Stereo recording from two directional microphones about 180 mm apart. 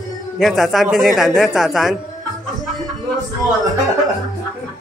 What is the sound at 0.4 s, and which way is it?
Speech, centre (ahead or behind).